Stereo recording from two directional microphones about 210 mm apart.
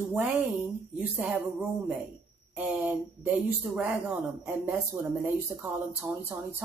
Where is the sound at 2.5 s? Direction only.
5° right (ahead or behind).